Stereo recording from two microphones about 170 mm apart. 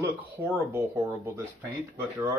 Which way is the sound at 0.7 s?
15° right (ahead or behind).